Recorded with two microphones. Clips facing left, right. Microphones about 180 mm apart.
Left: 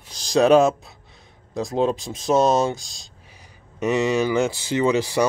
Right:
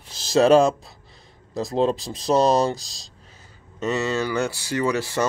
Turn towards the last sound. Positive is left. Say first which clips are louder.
# left 3 dB
turn(degrees=15)  # may be behind; listen again after turning